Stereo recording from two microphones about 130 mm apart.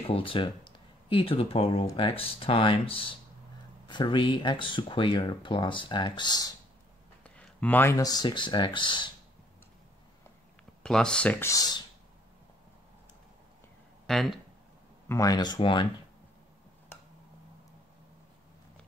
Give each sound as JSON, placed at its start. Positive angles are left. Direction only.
{"t": 0.0, "sound": "speech", "side_deg": 45}
{"t": 7.2, "sound": "a sound", "side_deg": 10}
{"t": 8.0, "sound": "speech", "side_deg": 30}
{"t": 10.8, "sound": "speech", "side_deg": 5}
{"t": 11.4, "sound": "speech", "side_deg": 30}
{"t": 14.0, "sound": "speech", "side_deg": 0}
{"t": 15.0, "sound": "speech", "side_deg": 25}